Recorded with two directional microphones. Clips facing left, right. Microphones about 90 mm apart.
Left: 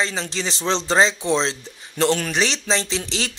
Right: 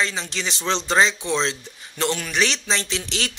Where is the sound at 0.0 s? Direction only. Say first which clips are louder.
Left 1 dB; 30° left (ahead or behind).